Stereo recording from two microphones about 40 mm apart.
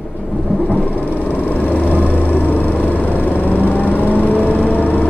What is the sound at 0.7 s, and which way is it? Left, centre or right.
Vehicle, left.